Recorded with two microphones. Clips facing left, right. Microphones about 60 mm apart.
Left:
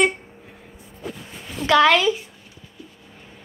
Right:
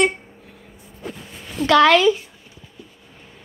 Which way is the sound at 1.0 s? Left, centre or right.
Right.